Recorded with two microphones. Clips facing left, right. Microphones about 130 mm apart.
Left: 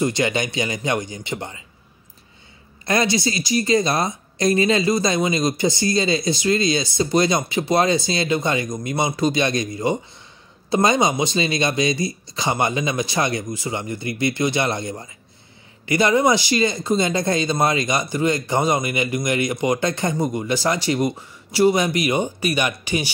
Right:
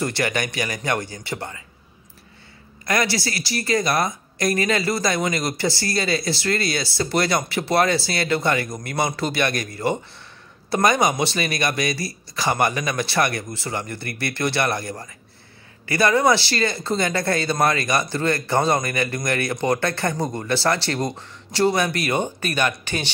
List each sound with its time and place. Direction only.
0.0 s speech: 20° left (ahead or behind)
2.8 s speech: 25° left (ahead or behind)